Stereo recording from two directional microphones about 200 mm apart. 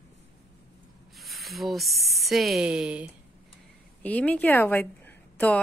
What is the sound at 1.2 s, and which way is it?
Speech, centre (ahead or behind).